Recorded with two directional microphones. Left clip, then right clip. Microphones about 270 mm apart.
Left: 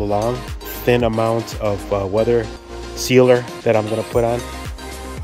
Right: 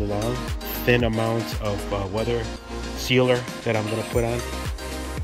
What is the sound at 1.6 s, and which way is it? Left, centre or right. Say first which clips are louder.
Speech: left 7 dB; left.